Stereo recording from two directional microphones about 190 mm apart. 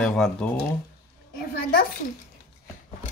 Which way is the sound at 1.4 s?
55° left (ahead or behind).